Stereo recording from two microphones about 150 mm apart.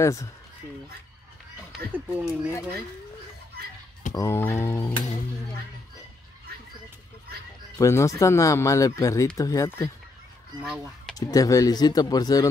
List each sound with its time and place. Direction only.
0.0 s speech: 20° left (ahead or behind)
1.9 s speech: 10° right (ahead or behind)
4.1 s speech: 20° left (ahead or behind)
7.7 s speech: 20° left (ahead or behind)
10.6 s speech: 5° right (ahead or behind)
11.1 s speech: 25° left (ahead or behind)